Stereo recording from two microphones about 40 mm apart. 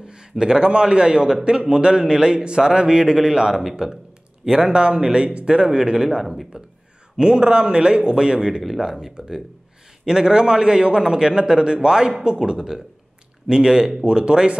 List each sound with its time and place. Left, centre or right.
0.0 s a man's voice: centre
5.8 s a man's voice: centre